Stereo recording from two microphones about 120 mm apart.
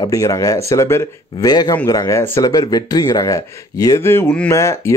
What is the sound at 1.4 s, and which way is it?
Speech, 35° left (ahead or behind).